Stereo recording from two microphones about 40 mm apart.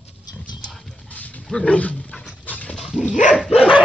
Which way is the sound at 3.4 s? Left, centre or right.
Centre.